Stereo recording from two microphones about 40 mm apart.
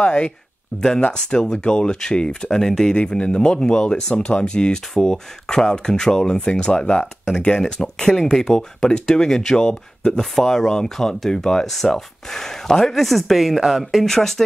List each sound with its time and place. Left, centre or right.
0.0 s speech: left
0.7 s speech: centre
3.0 s speech: left
10.3 s speech: centre
13.0 s speech: centre
13.6 s speech: centre
14.0 s speech: centre